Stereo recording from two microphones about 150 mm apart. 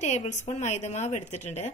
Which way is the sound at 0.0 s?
50° left (ahead or behind).